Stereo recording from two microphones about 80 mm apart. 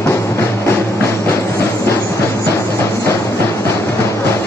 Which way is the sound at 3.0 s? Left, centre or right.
Left.